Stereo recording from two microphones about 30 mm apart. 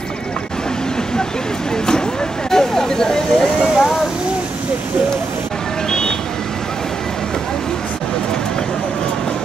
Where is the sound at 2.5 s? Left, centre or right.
Centre.